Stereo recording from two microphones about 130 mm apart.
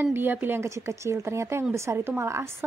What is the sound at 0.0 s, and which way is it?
Speech, 15° right (ahead or behind).